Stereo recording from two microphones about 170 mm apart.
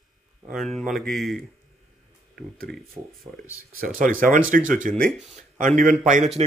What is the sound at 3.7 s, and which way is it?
Speech, 50° right (ahead or behind).